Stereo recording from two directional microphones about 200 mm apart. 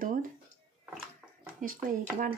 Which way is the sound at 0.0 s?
40° right (ahead or behind).